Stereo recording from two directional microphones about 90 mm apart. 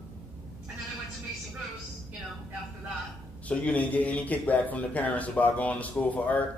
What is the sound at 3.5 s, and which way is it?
Speech, 15° left (ahead or behind).